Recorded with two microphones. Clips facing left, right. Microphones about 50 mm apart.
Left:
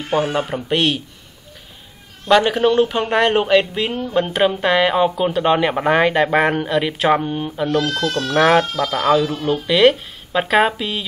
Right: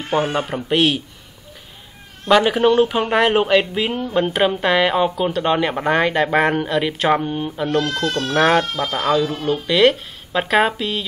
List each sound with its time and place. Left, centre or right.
0.1 s speech: centre
2.2 s speech: centre
8.0 s speech: right
8.3 s speech: centre